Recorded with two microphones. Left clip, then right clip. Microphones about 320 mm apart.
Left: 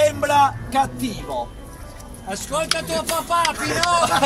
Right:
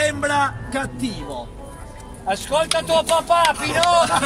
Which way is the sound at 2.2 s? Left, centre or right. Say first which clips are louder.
Right 5 dB; right.